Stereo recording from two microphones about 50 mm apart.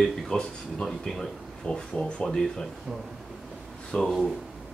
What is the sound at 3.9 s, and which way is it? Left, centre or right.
Speech, centre.